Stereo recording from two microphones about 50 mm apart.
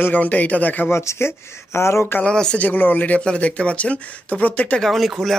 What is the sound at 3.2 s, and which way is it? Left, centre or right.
Speech, left.